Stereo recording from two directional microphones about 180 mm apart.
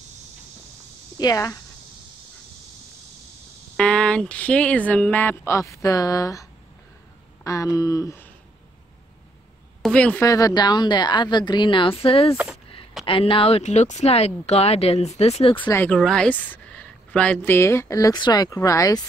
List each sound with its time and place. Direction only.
1.1 s a woman's voice: 20° left (ahead or behind)
3.7 s speech: 5° left (ahead or behind)
7.4 s speech: 20° left (ahead or behind)
9.8 s a woman's voice: 5° left (ahead or behind)
10.2 s a woman's voice: 20° left (ahead or behind)
15.6 s speech: 10° left (ahead or behind)